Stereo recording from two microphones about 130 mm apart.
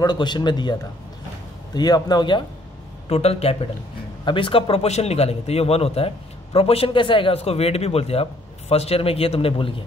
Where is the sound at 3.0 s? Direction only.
50° left (ahead or behind).